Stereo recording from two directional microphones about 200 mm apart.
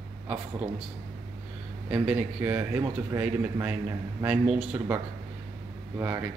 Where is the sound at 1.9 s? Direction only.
5° right (ahead or behind).